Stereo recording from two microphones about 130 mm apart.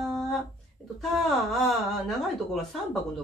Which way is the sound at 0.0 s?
Centre (ahead or behind).